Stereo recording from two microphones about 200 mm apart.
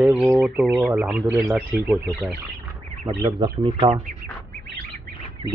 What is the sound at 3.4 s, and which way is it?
Speech, 25° right (ahead or behind).